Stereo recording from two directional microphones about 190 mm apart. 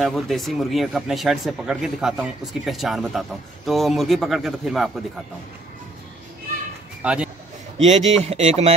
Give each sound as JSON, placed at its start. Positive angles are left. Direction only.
{"t": 0.0, "sound": "speech", "side_deg": 0}
{"t": 7.0, "sound": "speech", "side_deg": -5}
{"t": 7.7, "sound": "speech", "side_deg": -35}